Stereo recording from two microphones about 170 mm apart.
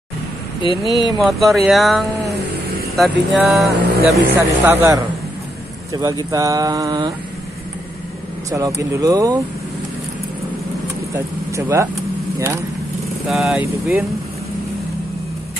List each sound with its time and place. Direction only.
0.6 s speech: 30° left (ahead or behind)
1.2 s speech: centre (ahead or behind)
4.6 s a man's voice: 10° right (ahead or behind)
5.9 s speech: 20° right (ahead or behind)
8.5 s a man's voice: 20° right (ahead or behind)
11.1 s speech: 15° right (ahead or behind)
13.3 s speech: centre (ahead or behind)